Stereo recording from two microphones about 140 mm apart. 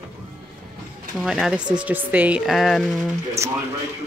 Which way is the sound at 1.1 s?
5° right (ahead or behind).